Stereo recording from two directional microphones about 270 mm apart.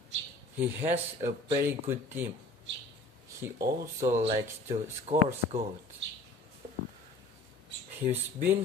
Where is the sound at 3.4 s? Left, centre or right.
Centre.